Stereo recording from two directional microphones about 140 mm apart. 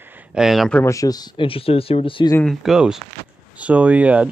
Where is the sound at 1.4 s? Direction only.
40° left (ahead or behind).